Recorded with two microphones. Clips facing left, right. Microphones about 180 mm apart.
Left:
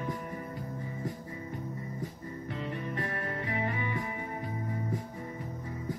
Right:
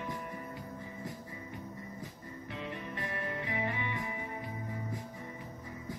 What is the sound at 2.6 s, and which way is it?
Music, 40° left (ahead or behind).